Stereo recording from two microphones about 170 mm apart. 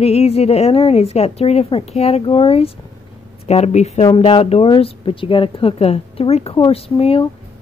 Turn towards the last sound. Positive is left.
turn(degrees=35)  # may be behind; listen again after turning